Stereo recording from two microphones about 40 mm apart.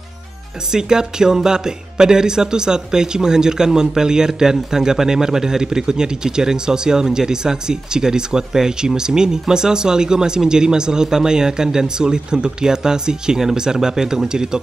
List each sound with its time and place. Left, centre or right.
0.7 s speech: centre